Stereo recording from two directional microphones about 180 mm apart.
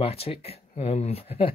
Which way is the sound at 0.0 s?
35° left (ahead or behind).